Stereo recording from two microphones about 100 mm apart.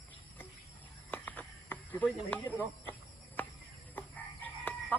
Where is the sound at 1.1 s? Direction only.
15° left (ahead or behind).